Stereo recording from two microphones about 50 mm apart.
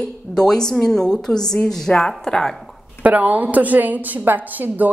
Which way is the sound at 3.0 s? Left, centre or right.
Right.